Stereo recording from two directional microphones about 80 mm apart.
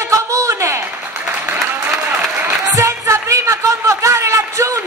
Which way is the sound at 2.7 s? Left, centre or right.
Right.